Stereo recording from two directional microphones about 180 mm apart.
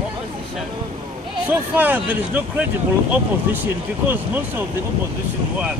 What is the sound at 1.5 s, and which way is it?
Speech, 10° right (ahead or behind).